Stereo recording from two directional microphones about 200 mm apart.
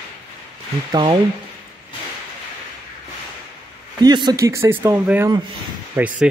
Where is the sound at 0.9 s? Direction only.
25° right (ahead or behind).